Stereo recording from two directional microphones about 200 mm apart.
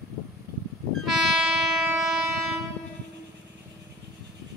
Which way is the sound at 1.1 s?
Centre (ahead or behind).